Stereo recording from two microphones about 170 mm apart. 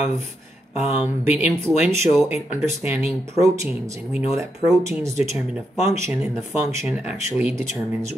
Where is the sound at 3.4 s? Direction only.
15° right (ahead or behind).